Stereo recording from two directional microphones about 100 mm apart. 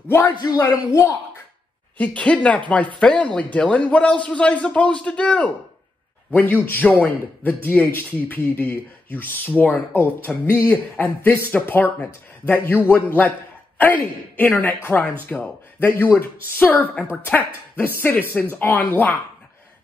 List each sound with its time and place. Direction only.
0.3 s a man's voice: 45° left (ahead or behind)
0.6 s speech: 30° left (ahead or behind)
2.0 s a man's voice: 15° left (ahead or behind)
13.7 s a man's voice: 15° left (ahead or behind)